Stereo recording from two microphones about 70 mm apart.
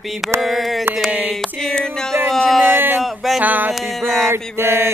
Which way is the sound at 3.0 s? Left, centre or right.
Centre.